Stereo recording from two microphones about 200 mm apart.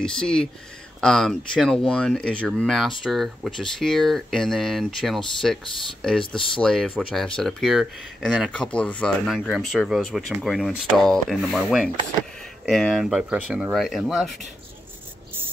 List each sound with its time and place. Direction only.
0.0 s speech: 5° left (ahead or behind)